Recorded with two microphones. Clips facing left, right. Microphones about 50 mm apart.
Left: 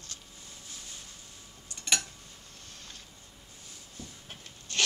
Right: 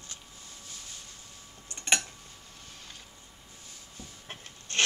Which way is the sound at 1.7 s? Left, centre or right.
Right.